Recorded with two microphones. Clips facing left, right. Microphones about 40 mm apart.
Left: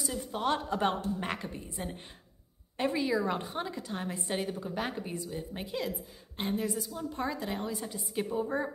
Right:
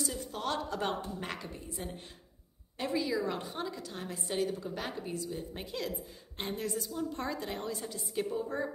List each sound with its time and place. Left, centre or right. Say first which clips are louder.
0.0 s a woman's voice: left 1 dB; centre
0.3 s a woman's voice: left 7 dB; left
2.8 s a woman's voice: left 3 dB; left
5.3 s a woman's voice: left 2 dB; centre